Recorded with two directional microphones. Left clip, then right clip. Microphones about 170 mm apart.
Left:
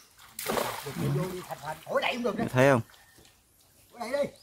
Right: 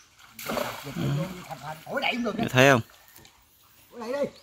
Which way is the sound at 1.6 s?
20° left (ahead or behind).